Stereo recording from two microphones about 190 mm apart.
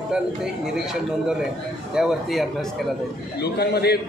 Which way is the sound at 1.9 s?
Centre (ahead or behind).